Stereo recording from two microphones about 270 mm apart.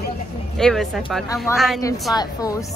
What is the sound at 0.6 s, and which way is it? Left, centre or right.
Speech, centre.